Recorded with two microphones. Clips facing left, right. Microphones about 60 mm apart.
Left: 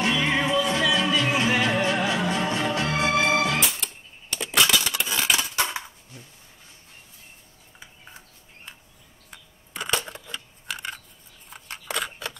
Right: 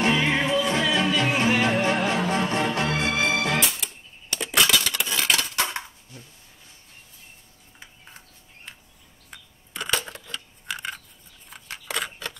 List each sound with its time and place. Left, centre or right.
0.2 s music: centre
3.0 s music: centre
3.5 s a sound: centre
9.8 s coin: centre
10.7 s a sound: centre
11.5 s scissors: centre